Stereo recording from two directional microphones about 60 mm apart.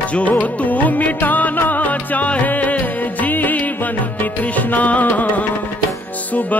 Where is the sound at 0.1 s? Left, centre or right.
Left.